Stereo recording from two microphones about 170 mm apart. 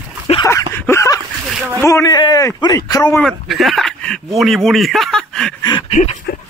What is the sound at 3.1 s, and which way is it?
Speech, centre (ahead or behind).